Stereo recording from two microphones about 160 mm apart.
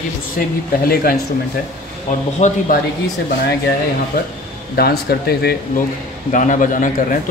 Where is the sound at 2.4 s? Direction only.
45° left (ahead or behind).